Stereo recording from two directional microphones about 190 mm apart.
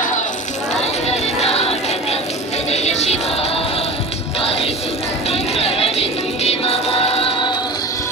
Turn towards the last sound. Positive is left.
turn(degrees=25)  # may be behind; listen again after turning